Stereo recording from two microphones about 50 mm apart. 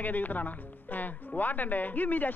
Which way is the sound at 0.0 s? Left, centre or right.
Left.